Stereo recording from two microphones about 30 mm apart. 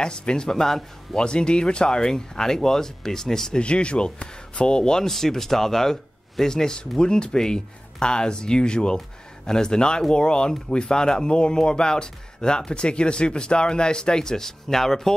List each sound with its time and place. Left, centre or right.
0.0 s speech: left
1.1 s speech: left; by 3.5 s centre
3.5 s speech: left
5.0 s speech: centre